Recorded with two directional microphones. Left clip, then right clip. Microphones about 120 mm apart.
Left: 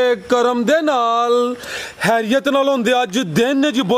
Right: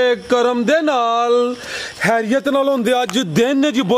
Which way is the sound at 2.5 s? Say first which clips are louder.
Even; centre (ahead or behind).